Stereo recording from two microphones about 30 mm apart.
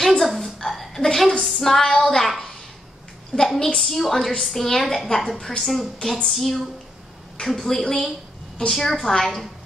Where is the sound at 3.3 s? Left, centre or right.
Left.